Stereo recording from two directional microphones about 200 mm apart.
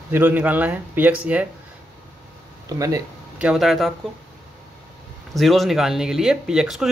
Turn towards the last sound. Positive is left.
turn(degrees=0)  # may be behind; listen again after turning